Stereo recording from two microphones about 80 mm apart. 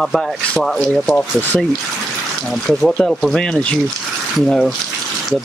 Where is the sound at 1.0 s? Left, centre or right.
Left.